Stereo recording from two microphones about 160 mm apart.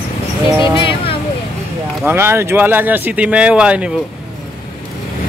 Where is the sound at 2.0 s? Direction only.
15° right (ahead or behind).